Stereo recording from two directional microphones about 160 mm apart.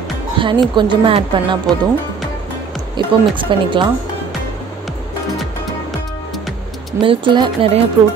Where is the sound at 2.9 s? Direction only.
30° right (ahead or behind).